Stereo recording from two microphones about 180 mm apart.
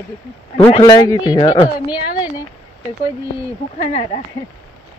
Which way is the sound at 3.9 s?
35° left (ahead or behind).